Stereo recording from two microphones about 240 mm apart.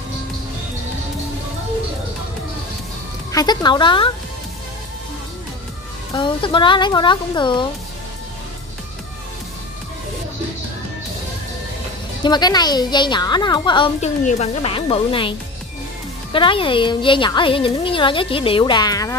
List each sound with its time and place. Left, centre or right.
3.3 s speech: centre
6.1 s a woman's voice: centre
12.2 s a woman's voice: centre
16.3 s a woman's voice: left